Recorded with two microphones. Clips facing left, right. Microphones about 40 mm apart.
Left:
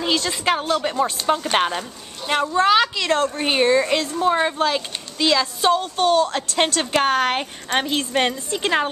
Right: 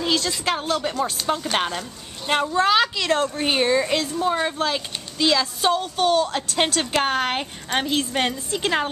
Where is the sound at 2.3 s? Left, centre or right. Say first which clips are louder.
Left 2 dB; centre.